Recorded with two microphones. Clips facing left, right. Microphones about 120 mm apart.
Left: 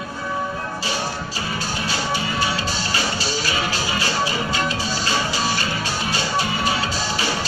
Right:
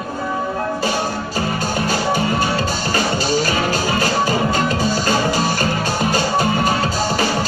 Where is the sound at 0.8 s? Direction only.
50° right (ahead or behind).